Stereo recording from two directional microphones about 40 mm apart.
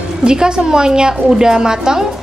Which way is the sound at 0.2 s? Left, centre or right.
Right.